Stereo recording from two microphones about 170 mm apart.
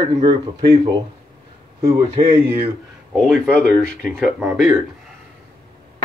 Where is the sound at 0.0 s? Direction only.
25° right (ahead or behind).